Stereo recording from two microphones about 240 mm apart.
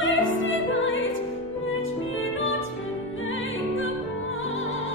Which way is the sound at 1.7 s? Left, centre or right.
Left.